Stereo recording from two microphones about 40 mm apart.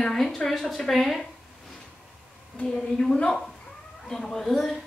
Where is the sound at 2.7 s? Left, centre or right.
Centre.